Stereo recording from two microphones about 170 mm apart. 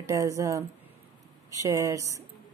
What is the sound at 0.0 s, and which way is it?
Speech, 20° right (ahead or behind).